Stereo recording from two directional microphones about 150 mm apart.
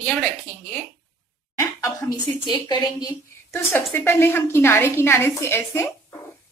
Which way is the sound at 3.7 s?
15° left (ahead or behind).